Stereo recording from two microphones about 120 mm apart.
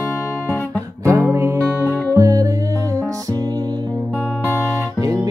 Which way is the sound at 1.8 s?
25° right (ahead or behind).